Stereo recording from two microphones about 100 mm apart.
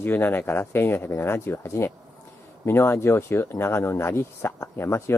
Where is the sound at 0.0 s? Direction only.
20° left (ahead or behind).